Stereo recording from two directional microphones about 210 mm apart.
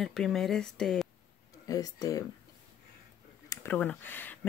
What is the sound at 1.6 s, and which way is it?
Speech, 15° left (ahead or behind).